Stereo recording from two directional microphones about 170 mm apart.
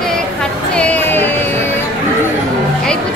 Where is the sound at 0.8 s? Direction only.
10° left (ahead or behind).